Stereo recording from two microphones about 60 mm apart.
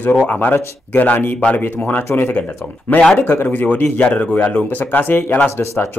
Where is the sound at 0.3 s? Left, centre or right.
Left.